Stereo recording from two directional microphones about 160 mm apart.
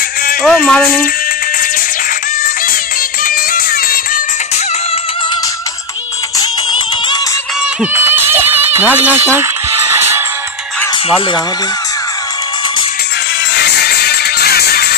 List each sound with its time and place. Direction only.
0.4 s speech: centre (ahead or behind)
3.3 s music: 65° left (ahead or behind)
7.8 s a sound: 15° right (ahead or behind)
13.6 s music: 85° left